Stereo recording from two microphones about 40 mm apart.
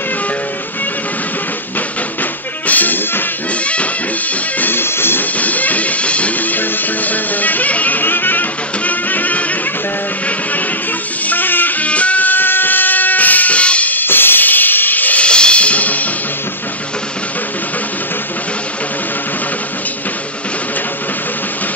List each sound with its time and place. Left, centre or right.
2.6 s music: left
3.6 s music: left
4.6 s music: left
5.4 s music: left
6.4 s music: left
11.2 s music: left
11.8 s music: left
12.3 s music: left
13.9 s drum kit: left
15.1 s music: left